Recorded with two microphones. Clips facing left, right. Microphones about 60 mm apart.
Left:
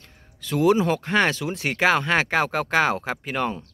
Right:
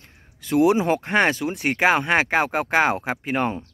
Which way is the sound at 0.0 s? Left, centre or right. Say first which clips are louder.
Left 3 dB; centre.